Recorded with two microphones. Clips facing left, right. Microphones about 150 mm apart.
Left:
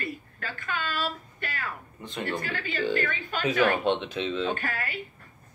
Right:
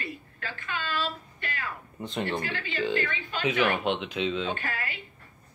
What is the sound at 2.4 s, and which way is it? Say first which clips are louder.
A woman's voice: left 1 dB; 45° left (ahead or behind).